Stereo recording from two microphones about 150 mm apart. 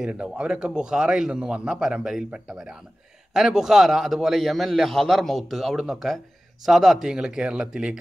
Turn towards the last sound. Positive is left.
turn(degrees=-5)  # may be behind; listen again after turning